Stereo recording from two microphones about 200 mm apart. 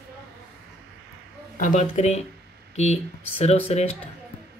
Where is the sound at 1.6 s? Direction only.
40° left (ahead or behind).